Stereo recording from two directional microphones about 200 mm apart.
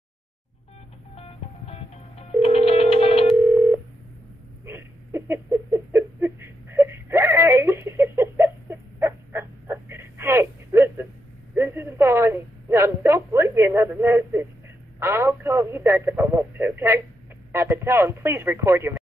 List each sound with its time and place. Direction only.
1.1 s music: 30° left (ahead or behind)
3.3 s telephone dialing: 10° right (ahead or behind)
4.6 s a sound: 15° right (ahead or behind)
15.0 s radio: 10° right (ahead or behind)